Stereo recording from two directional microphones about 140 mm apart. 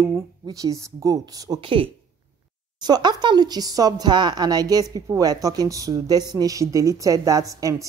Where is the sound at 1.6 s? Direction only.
40° right (ahead or behind).